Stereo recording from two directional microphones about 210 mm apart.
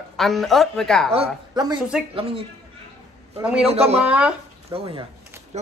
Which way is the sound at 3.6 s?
30° right (ahead or behind).